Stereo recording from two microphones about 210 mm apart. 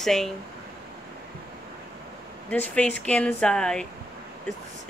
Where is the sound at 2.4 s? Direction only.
5° left (ahead or behind).